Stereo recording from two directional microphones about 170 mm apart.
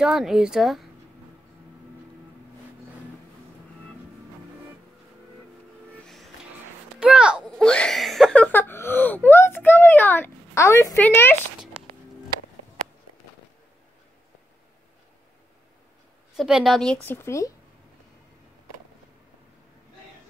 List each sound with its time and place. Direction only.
0.0 s a woman's voice: centre (ahead or behind)
6.0 s music: centre (ahead or behind)
7.0 s a sound: 5° right (ahead or behind); by 11.3 s 15° left (ahead or behind)
16.3 s a woman's voice: 5° right (ahead or behind); by 17.5 s 15° left (ahead or behind)